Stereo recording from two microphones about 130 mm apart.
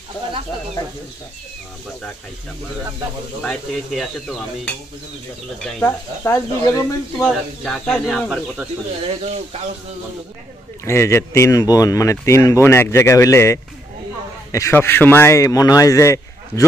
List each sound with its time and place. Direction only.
3.4 s stir: centre (ahead or behind)
5.9 s speech: 20° left (ahead or behind)
7.2 s stir: centre (ahead or behind)
9.0 s speech: 50° right (ahead or behind)
10.9 s speech: 20° left (ahead or behind)